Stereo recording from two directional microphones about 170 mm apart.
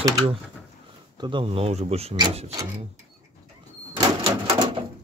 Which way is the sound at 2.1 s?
25° right (ahead or behind).